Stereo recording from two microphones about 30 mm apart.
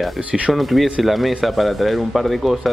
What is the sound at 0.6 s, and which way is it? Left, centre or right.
Speech, centre.